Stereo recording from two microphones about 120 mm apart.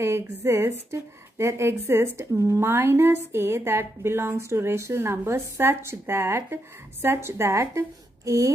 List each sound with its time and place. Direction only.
0.0 s speech: 25° right (ahead or behind)